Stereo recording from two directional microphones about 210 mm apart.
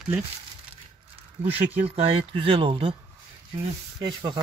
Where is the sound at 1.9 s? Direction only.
25° right (ahead or behind).